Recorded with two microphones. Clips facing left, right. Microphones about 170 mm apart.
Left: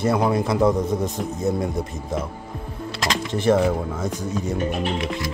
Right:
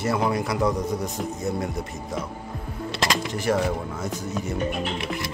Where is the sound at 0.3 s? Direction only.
25° left (ahead or behind).